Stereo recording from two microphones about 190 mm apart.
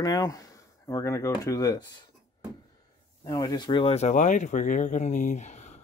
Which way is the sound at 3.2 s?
20° left (ahead or behind).